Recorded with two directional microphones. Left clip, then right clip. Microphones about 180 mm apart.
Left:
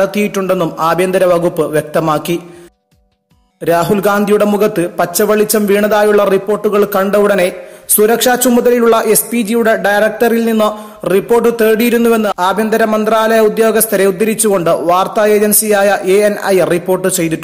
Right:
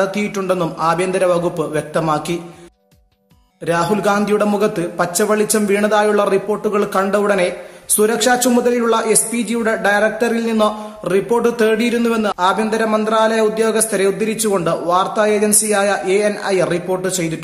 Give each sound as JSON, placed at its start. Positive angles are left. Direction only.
{"t": 0.0, "sound": "a man's voice", "side_deg": 30}
{"t": 3.6, "sound": "a man's voice", "side_deg": 30}